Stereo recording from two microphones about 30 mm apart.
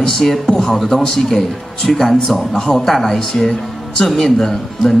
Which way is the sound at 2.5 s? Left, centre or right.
Left.